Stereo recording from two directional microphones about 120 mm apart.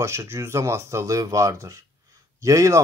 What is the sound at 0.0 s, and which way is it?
Speech, 25° right (ahead or behind).